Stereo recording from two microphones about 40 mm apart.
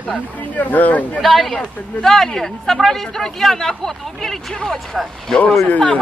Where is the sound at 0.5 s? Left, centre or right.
Left.